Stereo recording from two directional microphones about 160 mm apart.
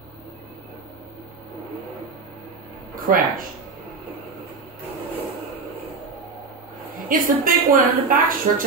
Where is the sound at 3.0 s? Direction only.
60° right (ahead or behind).